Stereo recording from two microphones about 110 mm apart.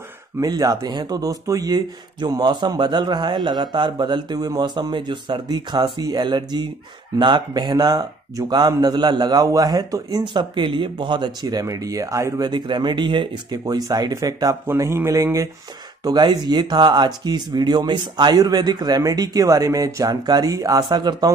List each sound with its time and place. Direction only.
0.4 s speech: 35° right (ahead or behind)
14.7 s mantra: 20° right (ahead or behind)
16.0 s speech: 35° right (ahead or behind)